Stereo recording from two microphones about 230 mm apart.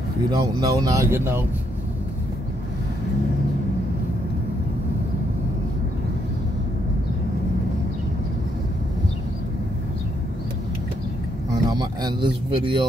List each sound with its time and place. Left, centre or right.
0.3 s speech: centre
11.5 s speech: centre